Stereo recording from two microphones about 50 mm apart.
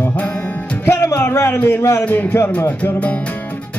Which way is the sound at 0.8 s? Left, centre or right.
Left.